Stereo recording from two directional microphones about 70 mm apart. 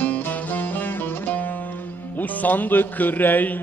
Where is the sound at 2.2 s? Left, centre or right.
Left.